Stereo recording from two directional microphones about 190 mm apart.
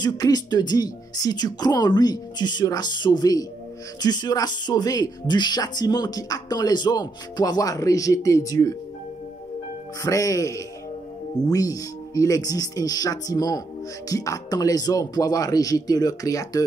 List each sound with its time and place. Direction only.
0.0 s speech: 20° left (ahead or behind)
10.0 s speech: 15° left (ahead or behind)